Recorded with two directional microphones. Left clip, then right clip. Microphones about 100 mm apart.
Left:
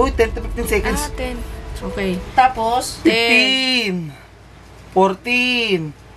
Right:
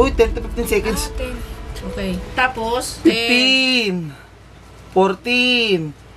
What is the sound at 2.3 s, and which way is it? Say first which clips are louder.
Speech: left 4 dB; 20° right (ahead or behind).